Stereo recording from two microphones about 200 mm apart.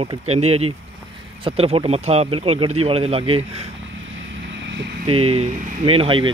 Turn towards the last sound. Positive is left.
turn(degrees=-25)  # may be behind; listen again after turning